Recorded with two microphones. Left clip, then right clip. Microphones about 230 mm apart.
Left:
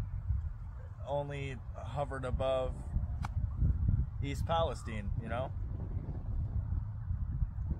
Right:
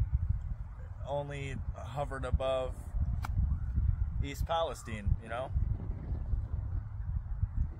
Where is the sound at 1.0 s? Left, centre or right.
Centre.